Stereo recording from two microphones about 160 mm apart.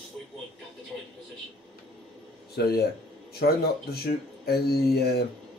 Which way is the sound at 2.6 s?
90° left.